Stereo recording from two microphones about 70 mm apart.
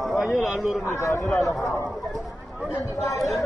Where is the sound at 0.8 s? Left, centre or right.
Left.